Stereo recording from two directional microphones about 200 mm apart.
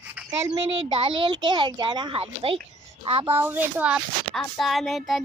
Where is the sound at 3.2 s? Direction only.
10° right (ahead or behind).